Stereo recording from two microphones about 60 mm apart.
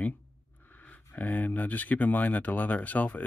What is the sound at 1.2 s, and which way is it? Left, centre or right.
Speech, left.